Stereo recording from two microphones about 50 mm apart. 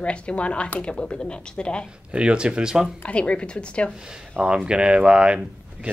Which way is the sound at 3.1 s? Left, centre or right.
Left.